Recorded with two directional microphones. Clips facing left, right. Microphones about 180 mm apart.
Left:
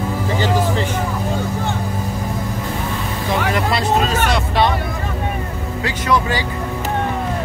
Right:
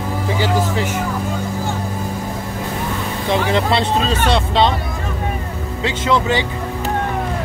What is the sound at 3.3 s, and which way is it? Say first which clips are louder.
Speech: right 3 dB; 25° right (ahead or behind).